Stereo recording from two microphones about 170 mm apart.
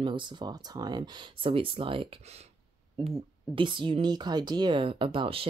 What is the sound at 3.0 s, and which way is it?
Speech, 30° right (ahead or behind).